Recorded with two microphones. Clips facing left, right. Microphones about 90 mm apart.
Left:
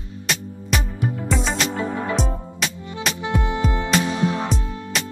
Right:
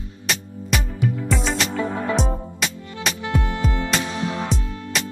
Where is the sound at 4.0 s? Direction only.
25° left (ahead or behind).